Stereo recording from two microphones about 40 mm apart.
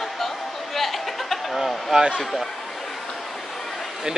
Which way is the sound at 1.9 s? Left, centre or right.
Right.